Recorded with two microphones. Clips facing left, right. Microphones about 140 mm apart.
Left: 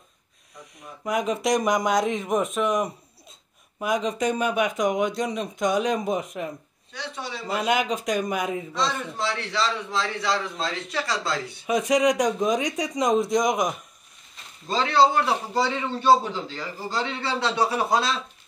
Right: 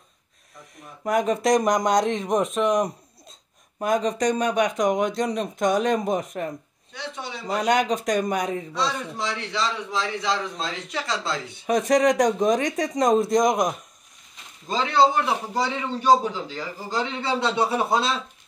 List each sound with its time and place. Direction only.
0.7 s speech: centre (ahead or behind)
6.9 s speech: 20° right (ahead or behind)
7.6 s speech: 5° left (ahead or behind)
8.7 s a man's voice: 10° right (ahead or behind)
11.7 s speech: centre (ahead or behind)
14.7 s a man's voice: 15° right (ahead or behind)